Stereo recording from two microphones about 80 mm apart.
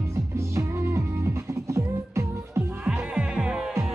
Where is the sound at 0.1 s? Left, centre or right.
Right.